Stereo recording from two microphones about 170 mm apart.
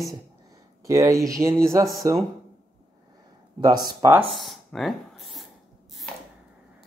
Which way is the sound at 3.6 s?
25° right (ahead or behind).